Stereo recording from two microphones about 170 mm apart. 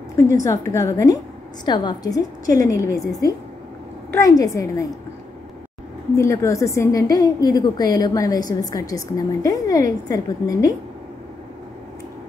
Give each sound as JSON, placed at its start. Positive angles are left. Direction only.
{"t": 0.4, "sound": "a woman's voice", "side_deg": 20}
{"t": 4.1, "sound": "a woman's voice", "side_deg": 20}
{"t": 6.1, "sound": "a woman's voice", "side_deg": 15}